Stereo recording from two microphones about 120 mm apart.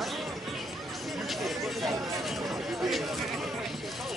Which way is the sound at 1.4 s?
Centre (ahead or behind).